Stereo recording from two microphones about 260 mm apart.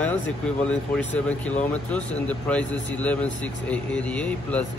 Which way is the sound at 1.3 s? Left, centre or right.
Centre.